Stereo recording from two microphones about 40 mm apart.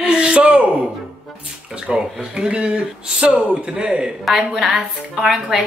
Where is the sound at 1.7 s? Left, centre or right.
Centre.